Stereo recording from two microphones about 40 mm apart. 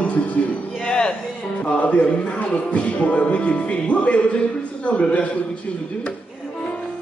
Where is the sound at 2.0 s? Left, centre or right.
Left.